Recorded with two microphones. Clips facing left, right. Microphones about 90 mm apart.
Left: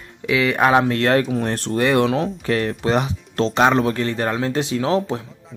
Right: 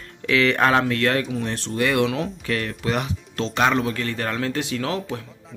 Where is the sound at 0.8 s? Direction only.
30° left (ahead or behind).